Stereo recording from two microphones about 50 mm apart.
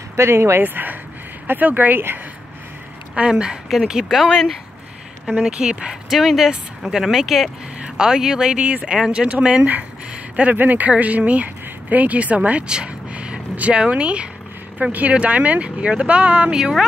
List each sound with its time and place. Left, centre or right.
0.1 s speech: right
0.6 s speech: right
3.2 s speech: centre
5.4 s speech: centre
6.0 s speech: centre; by 8.9 s right
8.9 s speech: centre
10.3 s speech: right; by 16.8 s centre